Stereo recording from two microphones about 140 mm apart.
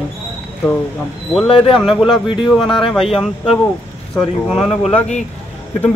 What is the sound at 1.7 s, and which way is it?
Speech, centre (ahead or behind).